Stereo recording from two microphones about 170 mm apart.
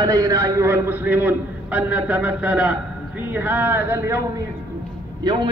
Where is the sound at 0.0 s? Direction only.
20° right (ahead or behind).